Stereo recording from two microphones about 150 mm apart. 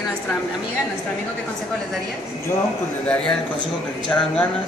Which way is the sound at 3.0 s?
5° left (ahead or behind).